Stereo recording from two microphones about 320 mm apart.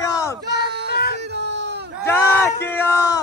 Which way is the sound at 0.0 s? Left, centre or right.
Centre.